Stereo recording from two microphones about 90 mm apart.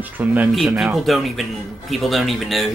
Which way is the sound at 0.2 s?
20° right (ahead or behind).